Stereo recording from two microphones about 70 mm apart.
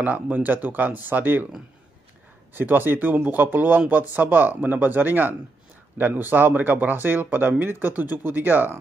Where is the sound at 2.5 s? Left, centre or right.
Right.